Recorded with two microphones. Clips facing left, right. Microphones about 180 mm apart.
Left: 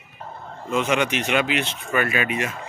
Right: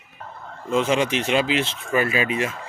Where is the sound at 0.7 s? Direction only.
30° right (ahead or behind).